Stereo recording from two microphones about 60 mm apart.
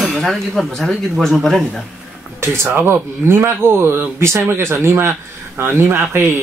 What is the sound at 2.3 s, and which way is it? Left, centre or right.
Speech, right.